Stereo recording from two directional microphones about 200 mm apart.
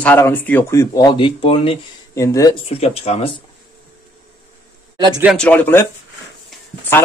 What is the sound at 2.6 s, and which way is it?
Speech, 30° left (ahead or behind).